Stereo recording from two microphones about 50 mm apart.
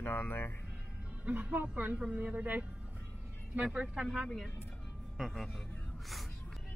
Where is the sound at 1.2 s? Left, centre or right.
Right.